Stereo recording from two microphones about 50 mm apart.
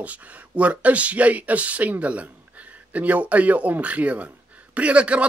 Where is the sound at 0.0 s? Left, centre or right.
Right.